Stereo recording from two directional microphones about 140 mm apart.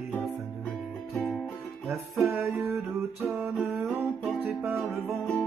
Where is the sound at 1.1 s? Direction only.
Centre (ahead or behind).